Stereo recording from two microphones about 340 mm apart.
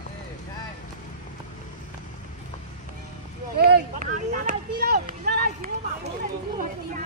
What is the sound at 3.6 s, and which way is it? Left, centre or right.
Speech, right.